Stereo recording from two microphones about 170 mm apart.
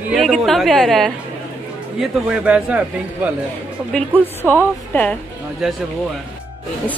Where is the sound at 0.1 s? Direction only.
Centre (ahead or behind).